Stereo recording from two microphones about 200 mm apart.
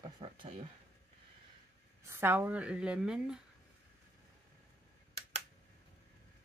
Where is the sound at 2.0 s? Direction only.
10° right (ahead or behind).